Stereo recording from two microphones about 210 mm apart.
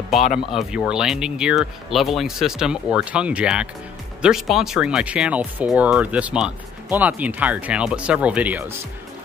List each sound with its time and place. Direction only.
0.5 s speech: 5° right (ahead or behind)